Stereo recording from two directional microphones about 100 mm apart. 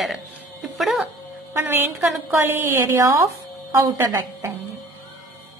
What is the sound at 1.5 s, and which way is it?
A woman's voice, 20° right (ahead or behind).